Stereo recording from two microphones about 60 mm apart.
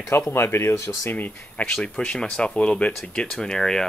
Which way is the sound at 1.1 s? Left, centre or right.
Left.